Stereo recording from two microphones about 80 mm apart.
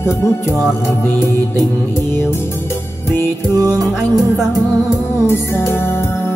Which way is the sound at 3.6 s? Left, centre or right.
Right.